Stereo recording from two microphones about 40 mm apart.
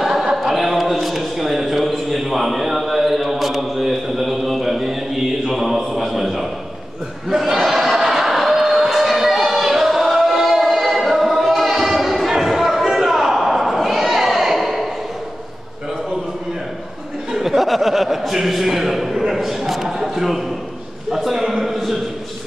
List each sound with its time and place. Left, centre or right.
0.0 s chant: centre
0.5 s a sound: centre
2.8 s mantra: centre
7.2 s crowd: centre
17.3 s chuckle: centre
19.3 s a sound: centre